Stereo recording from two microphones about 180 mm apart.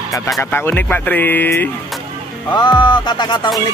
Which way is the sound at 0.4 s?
10° left (ahead or behind).